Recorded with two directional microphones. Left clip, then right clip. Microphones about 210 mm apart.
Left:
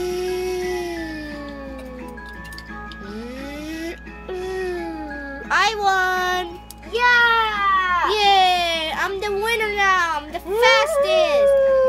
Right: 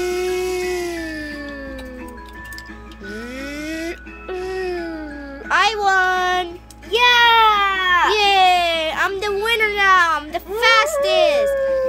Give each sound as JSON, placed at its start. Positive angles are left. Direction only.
{"t": 0.0, "sound": "a sound", "side_deg": -15}
{"t": 3.4, "sound": "music", "side_deg": -15}
{"t": 5.5, "sound": "a sound", "side_deg": -10}
{"t": 6.9, "sound": "children playing", "side_deg": -50}
{"t": 8.1, "sound": "baby cry", "side_deg": -10}
{"t": 10.6, "sound": "a child's voice", "side_deg": -15}